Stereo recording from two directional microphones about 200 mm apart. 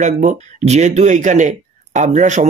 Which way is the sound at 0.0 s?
35° right (ahead or behind).